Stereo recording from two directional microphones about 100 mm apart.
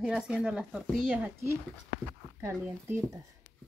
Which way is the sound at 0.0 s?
10° right (ahead or behind).